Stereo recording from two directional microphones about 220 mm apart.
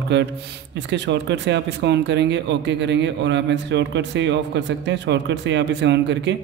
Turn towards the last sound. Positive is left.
turn(degrees=-50)  # may be behind; listen again after turning